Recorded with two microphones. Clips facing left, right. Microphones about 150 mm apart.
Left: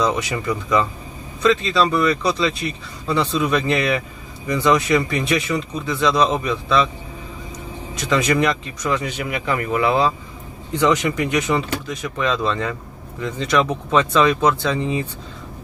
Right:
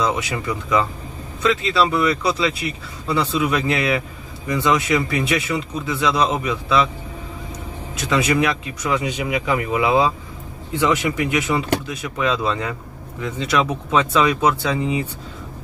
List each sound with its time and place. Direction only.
0.0 s speech: 5° right (ahead or behind)
7.9 s speech: 5° right (ahead or behind)